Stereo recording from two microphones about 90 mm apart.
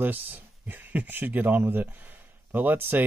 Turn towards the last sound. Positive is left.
turn(degrees=-20)  # may be behind; listen again after turning